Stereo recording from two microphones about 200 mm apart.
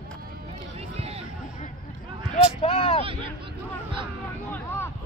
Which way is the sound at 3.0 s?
25° right (ahead or behind).